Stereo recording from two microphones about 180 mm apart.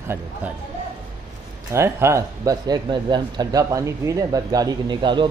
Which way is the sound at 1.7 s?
15° right (ahead or behind).